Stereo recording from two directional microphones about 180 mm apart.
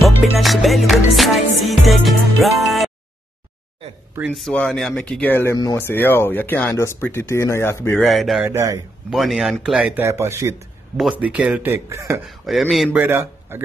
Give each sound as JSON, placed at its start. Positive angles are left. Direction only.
{"t": 0.2, "sound": "music", "side_deg": 0}
{"t": 4.3, "sound": "speech", "side_deg": 5}
{"t": 8.0, "sound": "music", "side_deg": 0}
{"t": 8.5, "sound": "speech", "side_deg": -15}
{"t": 9.1, "sound": "speech", "side_deg": 0}
{"t": 12.3, "sound": "music", "side_deg": 0}